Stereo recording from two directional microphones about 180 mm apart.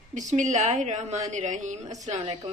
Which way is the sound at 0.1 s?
45° right (ahead or behind).